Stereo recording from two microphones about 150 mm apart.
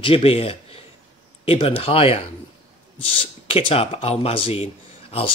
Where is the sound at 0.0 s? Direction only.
40° left (ahead or behind).